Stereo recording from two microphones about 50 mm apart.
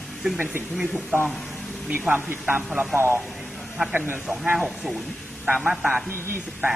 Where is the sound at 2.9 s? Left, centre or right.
Right.